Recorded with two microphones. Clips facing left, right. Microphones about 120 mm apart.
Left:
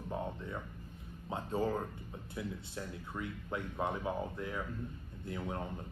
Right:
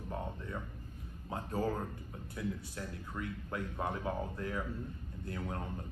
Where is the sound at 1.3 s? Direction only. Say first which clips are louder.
Left 1 dB; 25° left (ahead or behind).